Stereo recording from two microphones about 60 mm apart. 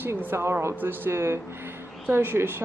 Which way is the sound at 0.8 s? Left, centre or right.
Right.